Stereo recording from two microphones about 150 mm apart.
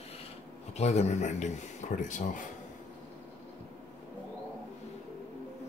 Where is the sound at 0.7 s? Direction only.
50° left (ahead or behind).